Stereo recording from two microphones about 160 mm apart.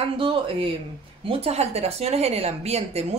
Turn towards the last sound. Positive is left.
turn(degrees=-40)  # may be behind; listen again after turning